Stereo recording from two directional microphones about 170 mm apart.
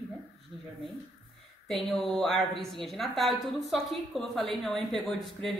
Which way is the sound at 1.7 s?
Centre (ahead or behind).